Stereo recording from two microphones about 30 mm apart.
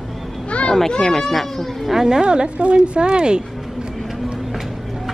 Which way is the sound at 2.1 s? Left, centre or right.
Right.